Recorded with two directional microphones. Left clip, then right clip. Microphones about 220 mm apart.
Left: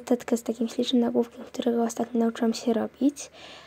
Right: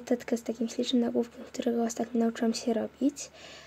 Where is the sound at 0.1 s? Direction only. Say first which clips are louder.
Left 4 dB; 25° left (ahead or behind).